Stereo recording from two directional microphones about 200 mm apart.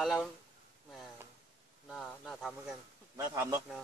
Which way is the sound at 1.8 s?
Centre (ahead or behind).